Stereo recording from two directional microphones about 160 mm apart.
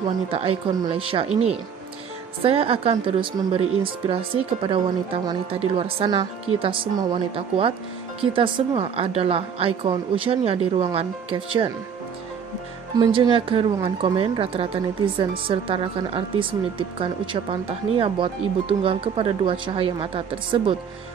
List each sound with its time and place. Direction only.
0.3 s a woman's voice: 35° right (ahead or behind)
12.9 s a woman's voice: 30° right (ahead or behind)